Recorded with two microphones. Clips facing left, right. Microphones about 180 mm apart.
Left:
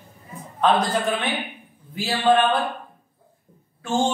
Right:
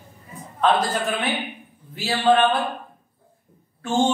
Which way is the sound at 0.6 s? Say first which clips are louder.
Left 1 dB; centre (ahead or behind).